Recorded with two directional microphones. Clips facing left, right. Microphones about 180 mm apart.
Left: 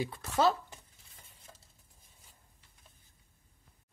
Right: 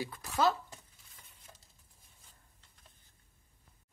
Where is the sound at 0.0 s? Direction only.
25° left (ahead or behind).